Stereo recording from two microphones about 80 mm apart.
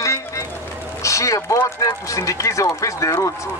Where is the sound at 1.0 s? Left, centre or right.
Left.